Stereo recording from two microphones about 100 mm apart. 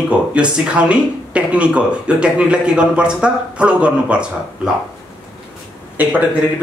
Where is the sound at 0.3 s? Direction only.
10° right (ahead or behind).